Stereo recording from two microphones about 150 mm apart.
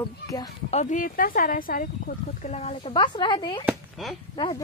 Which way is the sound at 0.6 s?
50° left (ahead or behind).